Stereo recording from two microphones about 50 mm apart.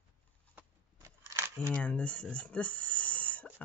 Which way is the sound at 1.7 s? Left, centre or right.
Left.